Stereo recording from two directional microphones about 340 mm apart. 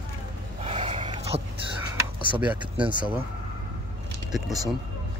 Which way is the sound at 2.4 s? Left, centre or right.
Centre.